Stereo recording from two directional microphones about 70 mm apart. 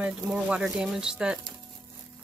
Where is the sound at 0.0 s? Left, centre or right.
Centre.